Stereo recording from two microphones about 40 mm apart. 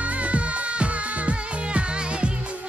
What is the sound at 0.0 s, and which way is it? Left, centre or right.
Music, right.